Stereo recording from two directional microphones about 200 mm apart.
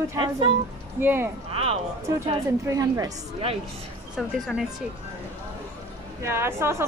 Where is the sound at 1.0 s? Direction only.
10° right (ahead or behind).